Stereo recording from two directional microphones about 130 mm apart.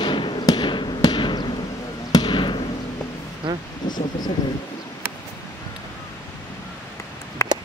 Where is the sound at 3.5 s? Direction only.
40° right (ahead or behind).